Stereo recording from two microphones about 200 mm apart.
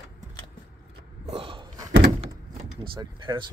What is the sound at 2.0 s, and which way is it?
Door, 30° right (ahead or behind).